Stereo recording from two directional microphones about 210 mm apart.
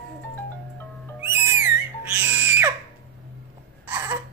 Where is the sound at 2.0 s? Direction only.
10° right (ahead or behind).